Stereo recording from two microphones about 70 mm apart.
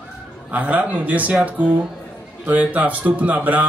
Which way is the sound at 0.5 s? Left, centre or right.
Right.